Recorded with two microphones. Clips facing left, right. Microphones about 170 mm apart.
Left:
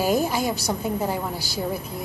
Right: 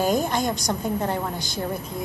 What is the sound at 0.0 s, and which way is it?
A woman's voice, 5° left (ahead or behind).